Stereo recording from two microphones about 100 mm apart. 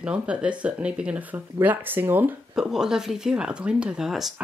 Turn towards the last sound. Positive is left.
turn(degrees=-5)  # may be behind; listen again after turning